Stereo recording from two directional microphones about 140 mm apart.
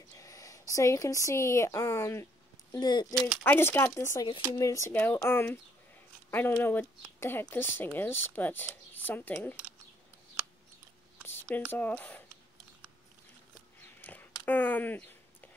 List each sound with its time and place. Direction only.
0.1 s speech: 25° left (ahead or behind)
2.7 s speech: 30° left (ahead or behind)
3.4 s speech: 15° left (ahead or behind)
11.2 s a sound: 15° left (ahead or behind)
11.7 s speech: 10° left (ahead or behind)
14.0 s a sound: 15° left (ahead or behind)